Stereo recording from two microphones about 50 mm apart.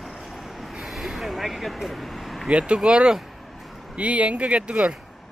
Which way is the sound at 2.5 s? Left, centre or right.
Right.